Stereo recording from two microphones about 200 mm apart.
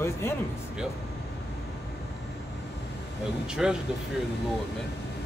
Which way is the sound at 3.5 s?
5° right (ahead or behind).